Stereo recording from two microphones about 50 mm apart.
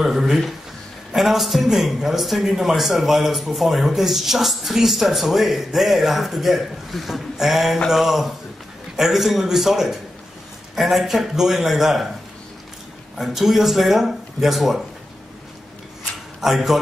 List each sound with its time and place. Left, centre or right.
0.0 s a man's voice: centre
13.2 s a man's voice: centre
16.3 s a man's voice: centre